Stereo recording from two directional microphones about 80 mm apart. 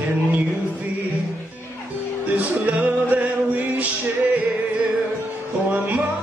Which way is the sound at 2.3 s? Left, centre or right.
Centre.